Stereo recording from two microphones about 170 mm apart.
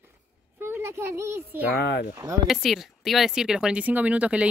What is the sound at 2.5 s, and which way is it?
Speech, centre (ahead or behind).